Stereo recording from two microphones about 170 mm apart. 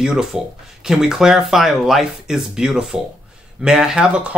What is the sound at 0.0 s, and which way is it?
Speech, 5° right (ahead or behind).